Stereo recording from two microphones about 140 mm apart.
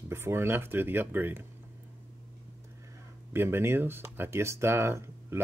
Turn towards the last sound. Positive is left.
turn(degrees=-20)  # may be behind; listen again after turning